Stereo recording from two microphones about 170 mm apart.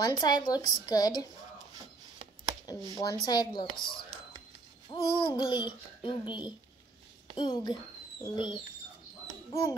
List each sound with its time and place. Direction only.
0.0 s speech: 25° left (ahead or behind)
2.9 s speech: 25° left (ahead or behind)
4.9 s speech: 30° left (ahead or behind)